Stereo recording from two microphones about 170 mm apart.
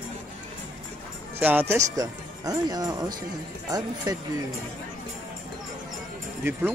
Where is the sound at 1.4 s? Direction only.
10° right (ahead or behind).